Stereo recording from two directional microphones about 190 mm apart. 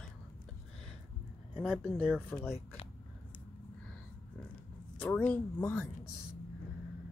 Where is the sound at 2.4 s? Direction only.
10° left (ahead or behind).